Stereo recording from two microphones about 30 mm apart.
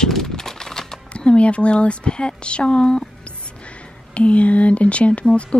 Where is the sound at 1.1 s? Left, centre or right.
Left.